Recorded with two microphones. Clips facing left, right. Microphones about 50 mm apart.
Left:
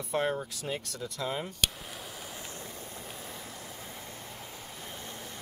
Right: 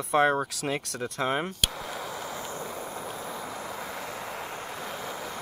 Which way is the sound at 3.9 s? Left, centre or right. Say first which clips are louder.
Right 9 dB; right.